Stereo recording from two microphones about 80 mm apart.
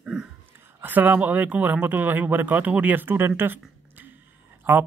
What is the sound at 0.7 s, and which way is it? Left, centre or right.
Speech, right.